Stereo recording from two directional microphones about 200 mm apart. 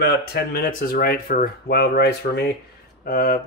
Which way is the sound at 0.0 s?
50° left (ahead or behind).